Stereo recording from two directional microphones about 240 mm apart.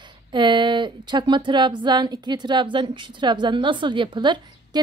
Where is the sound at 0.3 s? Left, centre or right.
Centre.